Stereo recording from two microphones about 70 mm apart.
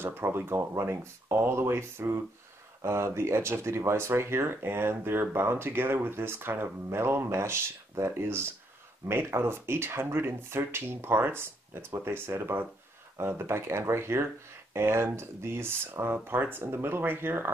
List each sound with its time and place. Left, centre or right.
0.0 s speech: right